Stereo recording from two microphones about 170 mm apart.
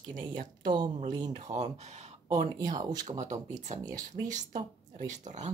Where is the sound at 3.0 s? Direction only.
45° right (ahead or behind).